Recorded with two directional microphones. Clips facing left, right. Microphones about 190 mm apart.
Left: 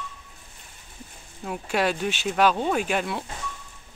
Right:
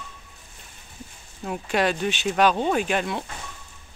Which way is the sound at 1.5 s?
5° left (ahead or behind).